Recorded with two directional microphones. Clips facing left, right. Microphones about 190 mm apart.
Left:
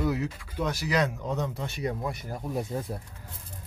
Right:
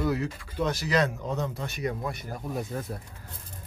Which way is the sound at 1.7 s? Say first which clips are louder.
Even; 30° left (ahead or behind).